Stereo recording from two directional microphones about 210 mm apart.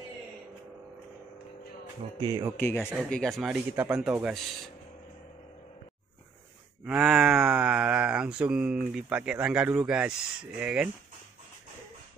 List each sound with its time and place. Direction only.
2.1 s speech: 20° right (ahead or behind)
2.5 s speech: 10° left (ahead or behind)
6.8 s speech: 5° right (ahead or behind)